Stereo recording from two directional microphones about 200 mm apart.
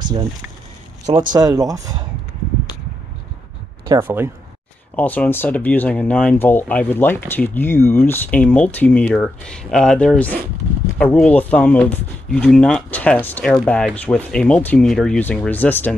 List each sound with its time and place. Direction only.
1.0 s speech: 25° right (ahead or behind)
4.0 s speech: 10° right (ahead or behind)
4.9 s speech: 10° left (ahead or behind)